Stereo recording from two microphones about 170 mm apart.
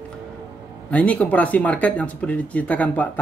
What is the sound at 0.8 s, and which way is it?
Speech, 5° left (ahead or behind).